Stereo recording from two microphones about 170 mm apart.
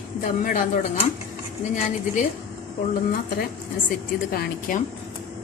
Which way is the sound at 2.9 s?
60° left (ahead or behind).